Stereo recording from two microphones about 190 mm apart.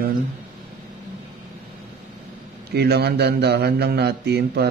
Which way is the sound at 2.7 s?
60° right (ahead or behind).